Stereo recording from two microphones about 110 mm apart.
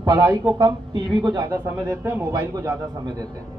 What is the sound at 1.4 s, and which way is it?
Speech, 25° right (ahead or behind).